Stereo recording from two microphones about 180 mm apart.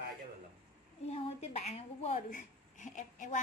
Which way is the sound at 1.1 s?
35° left (ahead or behind).